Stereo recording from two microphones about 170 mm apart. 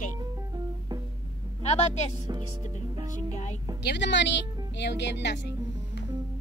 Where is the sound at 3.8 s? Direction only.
85° left.